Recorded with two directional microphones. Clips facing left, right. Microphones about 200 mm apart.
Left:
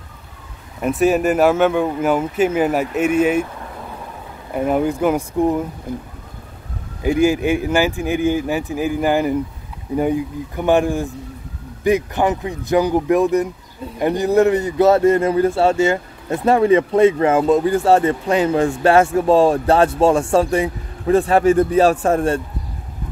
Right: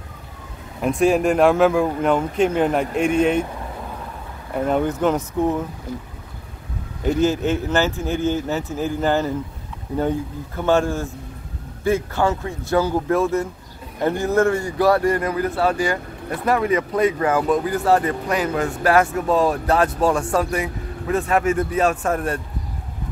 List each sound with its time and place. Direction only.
0.7 s speech: 5° left (ahead or behind)
4.6 s speech: 10° left (ahead or behind)
5.9 s speech: 55° left (ahead or behind)
7.0 s a man's voice: 10° left (ahead or behind); by 22.4 s 30° left (ahead or behind)